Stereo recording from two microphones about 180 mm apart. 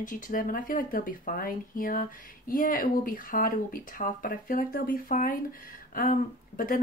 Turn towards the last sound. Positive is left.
turn(degrees=50)  # may be behind; listen again after turning